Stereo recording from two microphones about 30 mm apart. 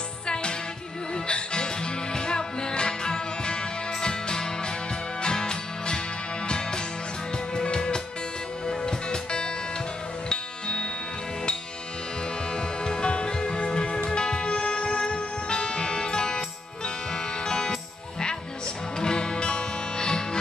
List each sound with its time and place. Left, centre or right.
0.3 s music: left
12.5 s music: left
18.9 s music: left